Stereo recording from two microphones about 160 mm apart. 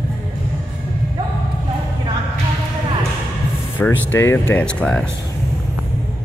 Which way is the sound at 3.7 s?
15° left (ahead or behind).